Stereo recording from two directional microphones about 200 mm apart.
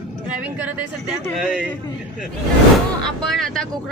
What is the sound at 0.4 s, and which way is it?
Speech, 5° right (ahead or behind).